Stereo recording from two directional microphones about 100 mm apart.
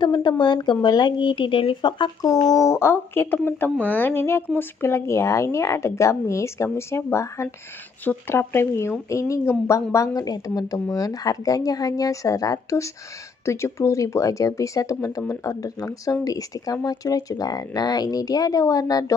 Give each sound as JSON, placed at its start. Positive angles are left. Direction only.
{"t": 0.0, "sound": "a woman's voice", "side_deg": 50}
{"t": 2.2, "sound": "speech", "side_deg": 40}